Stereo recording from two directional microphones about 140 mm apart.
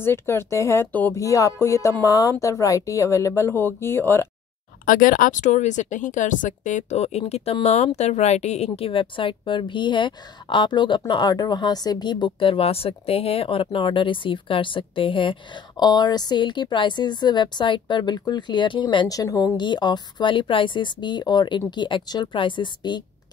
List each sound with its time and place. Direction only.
0.0 s speech: 20° left (ahead or behind)
4.8 s a woman's voice: 75° left (ahead or behind); by 23.0 s 35° left (ahead or behind)